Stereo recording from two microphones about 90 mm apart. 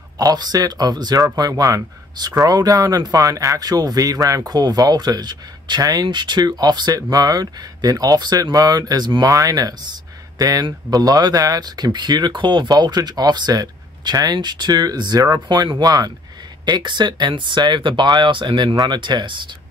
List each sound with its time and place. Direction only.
0.2 s speech: 45° right (ahead or behind)
16.6 s speech: 60° right (ahead or behind)